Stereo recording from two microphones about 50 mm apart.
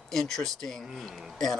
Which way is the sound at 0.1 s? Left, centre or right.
Centre.